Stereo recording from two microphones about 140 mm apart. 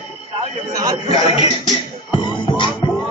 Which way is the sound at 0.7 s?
25° right (ahead or behind).